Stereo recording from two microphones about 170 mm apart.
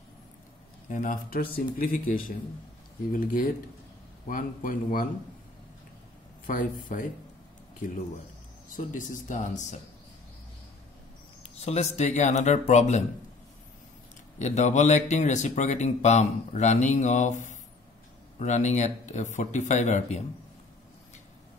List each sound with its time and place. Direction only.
0.8 s speech: 50° left (ahead or behind)
6.4 s speech: 50° left (ahead or behind)
8.7 s speech: 50° left (ahead or behind)
11.6 s speech: 40° left (ahead or behind)
14.4 s speech: 45° left (ahead or behind)